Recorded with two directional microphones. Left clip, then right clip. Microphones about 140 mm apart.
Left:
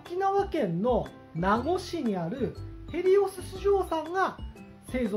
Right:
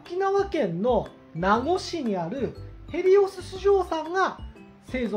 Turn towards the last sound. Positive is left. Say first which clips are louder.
# right 2 dB
turn(degrees=-5)  # may be behind; listen again after turning